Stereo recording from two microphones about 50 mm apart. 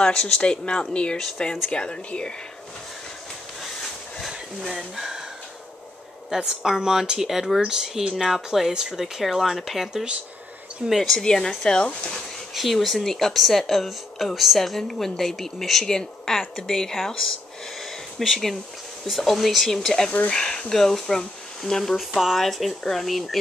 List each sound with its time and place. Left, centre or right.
0.0 s speech: centre
3.6 s a sound: centre
4.6 s speech: centre
6.3 s speech: centre
11.2 s speech: centre
12.5 s speech: centre
18.2 s speech: centre
21.9 s speech: centre